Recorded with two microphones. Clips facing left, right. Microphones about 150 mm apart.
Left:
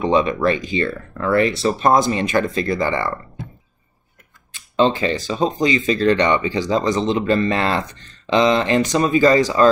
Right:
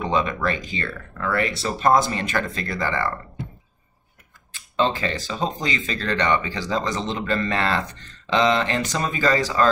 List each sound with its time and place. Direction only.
0.0 s speech: 20° left (ahead or behind)
4.7 s speech: 20° left (ahead or behind)